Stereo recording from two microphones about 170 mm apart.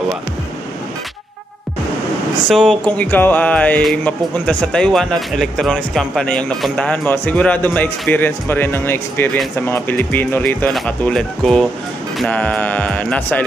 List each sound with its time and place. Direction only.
2.5 s speech: 5° left (ahead or behind)